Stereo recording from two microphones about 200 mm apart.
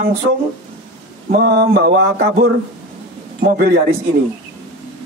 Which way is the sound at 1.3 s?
50° right (ahead or behind).